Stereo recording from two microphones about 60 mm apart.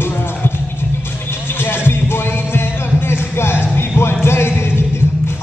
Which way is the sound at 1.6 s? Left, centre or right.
Left.